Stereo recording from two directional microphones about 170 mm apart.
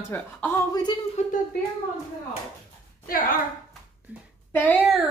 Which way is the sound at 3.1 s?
55° left (ahead or behind).